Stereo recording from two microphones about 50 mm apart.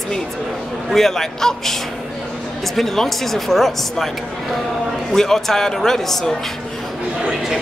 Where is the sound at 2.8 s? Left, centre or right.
Centre.